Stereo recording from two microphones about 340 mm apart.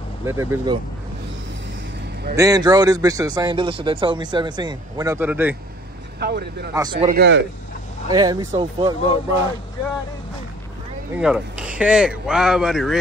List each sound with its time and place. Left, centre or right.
0.2 s speech: centre
2.3 s speech: centre
6.1 s a man's voice: right
6.7 s a man's voice: centre; by 7.4 s right
8.1 s speech: centre
11.1 s speech: centre